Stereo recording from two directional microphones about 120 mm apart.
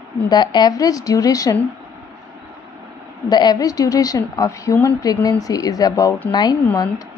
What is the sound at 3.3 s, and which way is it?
A woman's voice, 35° left (ahead or behind).